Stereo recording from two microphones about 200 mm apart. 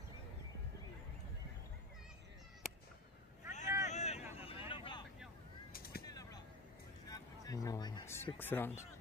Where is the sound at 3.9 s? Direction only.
35° left (ahead or behind).